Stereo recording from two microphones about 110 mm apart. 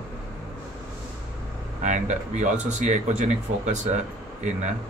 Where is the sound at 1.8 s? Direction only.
90° right.